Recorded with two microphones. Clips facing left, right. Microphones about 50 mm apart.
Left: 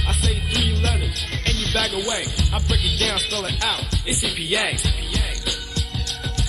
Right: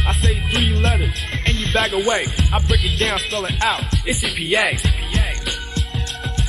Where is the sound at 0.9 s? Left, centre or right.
Centre.